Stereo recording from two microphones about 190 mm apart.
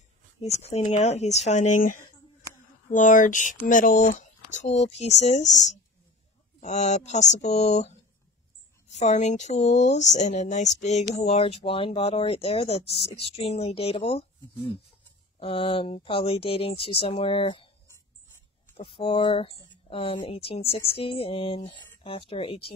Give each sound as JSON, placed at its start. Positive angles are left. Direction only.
{"t": 0.4, "sound": "speech", "side_deg": 35}
{"t": 8.9, "sound": "speech", "side_deg": 40}
{"t": 15.3, "sound": "speech", "side_deg": 30}
{"t": 18.8, "sound": "speech", "side_deg": 25}